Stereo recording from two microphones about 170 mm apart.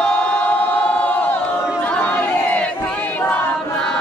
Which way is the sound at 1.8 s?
10° left (ahead or behind).